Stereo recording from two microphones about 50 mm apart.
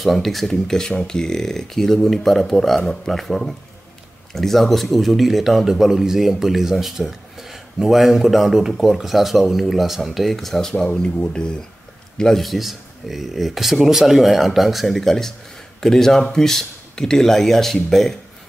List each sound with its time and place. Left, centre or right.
0.0 s speech: centre
12.2 s speech: centre